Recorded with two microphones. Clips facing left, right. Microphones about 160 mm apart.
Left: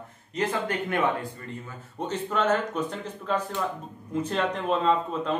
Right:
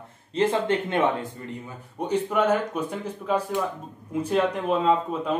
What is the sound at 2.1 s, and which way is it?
A man's voice, 10° right (ahead or behind).